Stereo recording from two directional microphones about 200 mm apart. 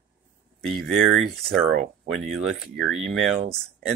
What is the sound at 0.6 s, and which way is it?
Speech, centre (ahead or behind).